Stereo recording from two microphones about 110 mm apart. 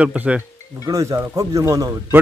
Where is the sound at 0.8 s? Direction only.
30° right (ahead or behind).